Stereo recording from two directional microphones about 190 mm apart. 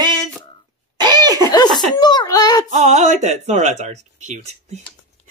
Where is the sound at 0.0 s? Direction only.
20° right (ahead or behind).